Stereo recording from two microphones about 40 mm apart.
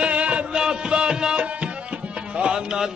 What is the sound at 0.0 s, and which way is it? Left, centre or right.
Music, right.